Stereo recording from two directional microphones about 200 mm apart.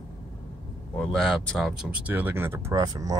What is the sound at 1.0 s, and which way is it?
Speech, centre (ahead or behind).